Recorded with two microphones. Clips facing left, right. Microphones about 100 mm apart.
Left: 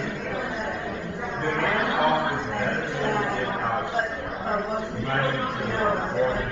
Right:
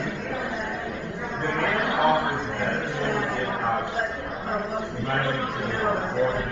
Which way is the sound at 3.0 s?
55° left (ahead or behind).